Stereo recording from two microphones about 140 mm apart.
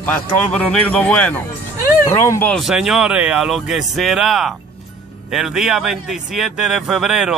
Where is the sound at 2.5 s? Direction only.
Centre (ahead or behind).